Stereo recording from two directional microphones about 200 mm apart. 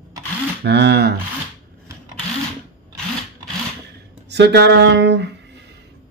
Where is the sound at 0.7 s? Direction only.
60° right (ahead or behind).